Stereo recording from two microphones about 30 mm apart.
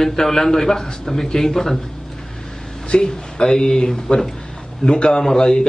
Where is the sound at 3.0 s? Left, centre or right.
Left.